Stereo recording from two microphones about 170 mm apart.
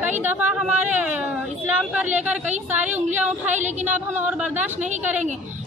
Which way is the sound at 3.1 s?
10° right (ahead or behind).